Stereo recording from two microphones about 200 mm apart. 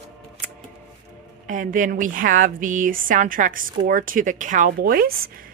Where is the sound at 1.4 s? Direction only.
40° right (ahead or behind).